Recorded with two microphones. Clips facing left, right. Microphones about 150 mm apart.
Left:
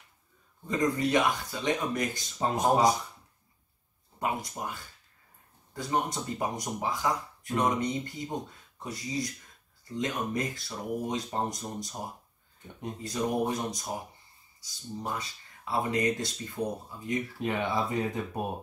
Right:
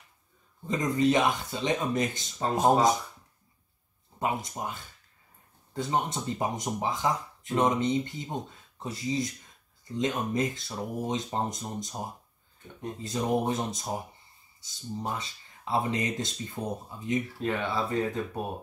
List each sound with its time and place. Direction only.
0.7 s speech: 20° right (ahead or behind)
4.2 s speech: 20° right (ahead or behind)
13.0 s speech: 25° right (ahead or behind)
17.4 s speech: 15° left (ahead or behind)